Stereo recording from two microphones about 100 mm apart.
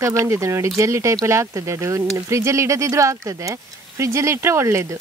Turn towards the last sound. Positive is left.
turn(degrees=-25)  # may be behind; listen again after turning